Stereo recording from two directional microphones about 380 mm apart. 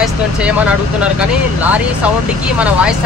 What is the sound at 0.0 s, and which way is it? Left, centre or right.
Speech, centre.